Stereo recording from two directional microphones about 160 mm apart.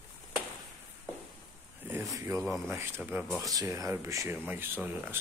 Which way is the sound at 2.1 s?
20° right (ahead or behind).